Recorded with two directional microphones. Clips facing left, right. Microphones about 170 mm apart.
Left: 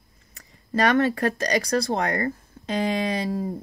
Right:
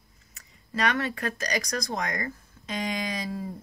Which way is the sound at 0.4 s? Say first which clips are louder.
Left 6 dB; 30° left (ahead or behind).